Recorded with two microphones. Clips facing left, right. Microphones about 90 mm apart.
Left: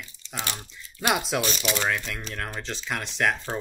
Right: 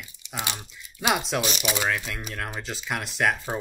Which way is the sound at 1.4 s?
10° right (ahead or behind).